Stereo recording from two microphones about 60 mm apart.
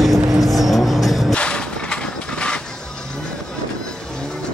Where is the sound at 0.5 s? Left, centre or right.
Centre.